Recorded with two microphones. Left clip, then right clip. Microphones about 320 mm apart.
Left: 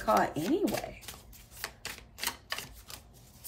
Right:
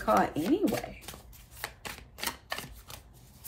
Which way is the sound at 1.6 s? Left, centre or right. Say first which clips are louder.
Right 1 dB; centre.